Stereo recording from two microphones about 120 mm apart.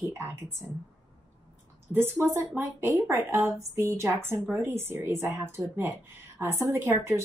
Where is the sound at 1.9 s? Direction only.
20° right (ahead or behind).